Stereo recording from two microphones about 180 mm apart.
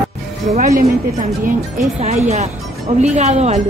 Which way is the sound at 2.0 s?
35° right (ahead or behind).